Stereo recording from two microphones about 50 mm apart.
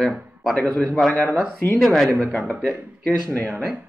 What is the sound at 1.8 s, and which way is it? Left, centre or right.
Speech, centre.